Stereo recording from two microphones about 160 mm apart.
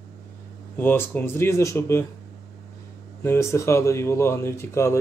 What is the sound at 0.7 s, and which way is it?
Speech, 15° left (ahead or behind).